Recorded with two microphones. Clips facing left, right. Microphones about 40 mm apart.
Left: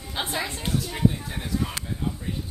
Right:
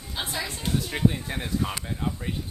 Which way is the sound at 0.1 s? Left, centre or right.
Centre.